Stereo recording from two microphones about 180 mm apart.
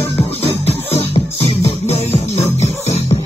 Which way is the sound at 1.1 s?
35° left (ahead or behind).